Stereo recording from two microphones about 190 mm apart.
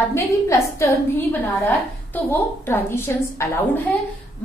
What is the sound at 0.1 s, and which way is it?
Speech, 15° left (ahead or behind).